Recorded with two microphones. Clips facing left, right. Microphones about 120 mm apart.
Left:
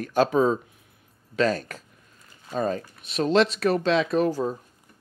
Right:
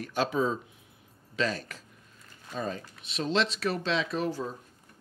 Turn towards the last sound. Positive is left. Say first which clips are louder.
# left 8 dB
turn(degrees=45)  # may be behind; listen again after turning